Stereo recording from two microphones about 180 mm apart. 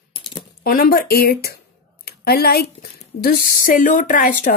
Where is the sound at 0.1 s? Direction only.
25° left (ahead or behind).